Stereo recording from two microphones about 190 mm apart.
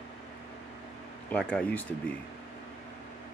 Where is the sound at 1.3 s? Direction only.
5° left (ahead or behind).